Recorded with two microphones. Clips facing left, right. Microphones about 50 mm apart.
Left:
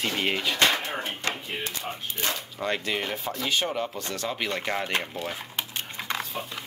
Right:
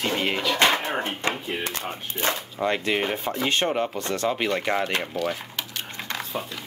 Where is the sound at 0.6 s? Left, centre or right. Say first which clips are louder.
Right 4 dB; right.